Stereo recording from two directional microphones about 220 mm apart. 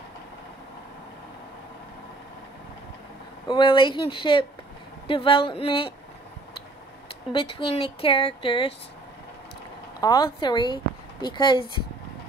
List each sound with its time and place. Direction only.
3.4 s speech: 20° left (ahead or behind)
7.3 s speech: 25° left (ahead or behind)
9.9 s speech: 20° left (ahead or behind)